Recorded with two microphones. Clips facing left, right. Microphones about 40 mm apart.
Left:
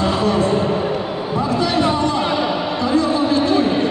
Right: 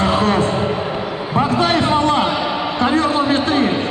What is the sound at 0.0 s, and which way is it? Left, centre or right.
Music, right.